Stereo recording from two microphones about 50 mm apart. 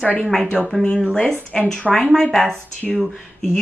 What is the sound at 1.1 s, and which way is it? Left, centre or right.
Speech, centre.